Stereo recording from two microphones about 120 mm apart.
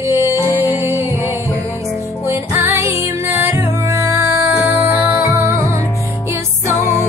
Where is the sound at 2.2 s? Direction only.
20° right (ahead or behind).